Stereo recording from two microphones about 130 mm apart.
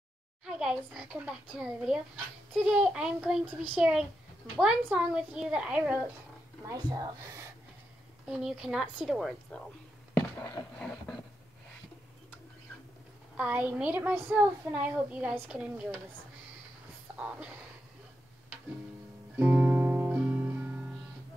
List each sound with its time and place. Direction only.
0.5 s a child's voice: 5° right (ahead or behind)
6.6 s speech: 30° right (ahead or behind)
8.3 s a child's voice: 5° right (ahead or behind)
10.8 s a sound: 5° left (ahead or behind)
13.4 s a woman's voice: 10° right (ahead or behind)
17.2 s a woman's voice: 10° right (ahead or behind)
19.3 s music: 10° right (ahead or behind)